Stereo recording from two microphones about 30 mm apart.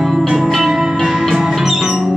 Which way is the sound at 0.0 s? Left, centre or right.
Centre.